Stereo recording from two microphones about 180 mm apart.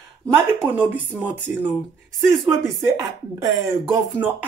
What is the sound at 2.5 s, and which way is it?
Speech, 15° right (ahead or behind).